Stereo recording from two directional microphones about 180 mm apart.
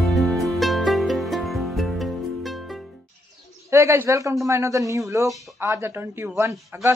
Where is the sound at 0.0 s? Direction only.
Centre (ahead or behind).